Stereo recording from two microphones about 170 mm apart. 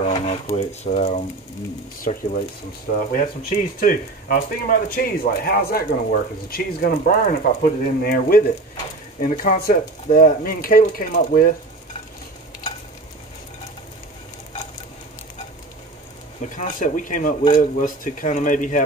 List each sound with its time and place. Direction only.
0.0 s a sound: 35° left (ahead or behind)
0.5 s frying: 45° left (ahead or behind)
2.1 s speech: 50° left (ahead or behind)
16.5 s speech: 50° left (ahead or behind)